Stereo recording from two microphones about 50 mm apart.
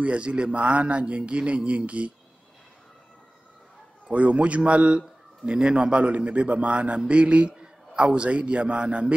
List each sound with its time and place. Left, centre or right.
0.0 s a man's voice: right
4.1 s a man's voice: right